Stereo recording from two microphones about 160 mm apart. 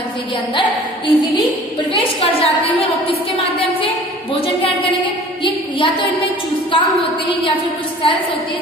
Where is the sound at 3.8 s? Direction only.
35° left (ahead or behind).